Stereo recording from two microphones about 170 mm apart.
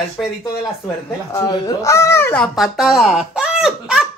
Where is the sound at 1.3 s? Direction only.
15° left (ahead or behind).